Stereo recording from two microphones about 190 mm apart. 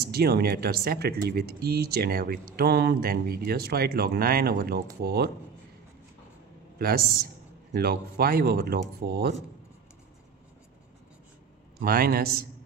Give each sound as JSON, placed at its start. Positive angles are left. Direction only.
{"t": 0.0, "sound": "speech", "side_deg": -55}
{"t": 6.8, "sound": "speech", "side_deg": -50}
{"t": 11.8, "sound": "speech", "side_deg": -50}